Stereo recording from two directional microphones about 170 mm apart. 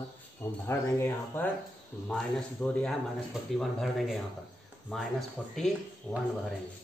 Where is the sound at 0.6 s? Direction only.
15° left (ahead or behind).